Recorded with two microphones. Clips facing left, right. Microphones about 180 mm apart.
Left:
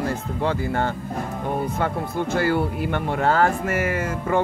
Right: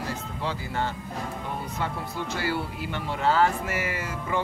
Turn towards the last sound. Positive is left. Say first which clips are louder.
# left 7 dB
turn(degrees=50)  # may be behind; listen again after turning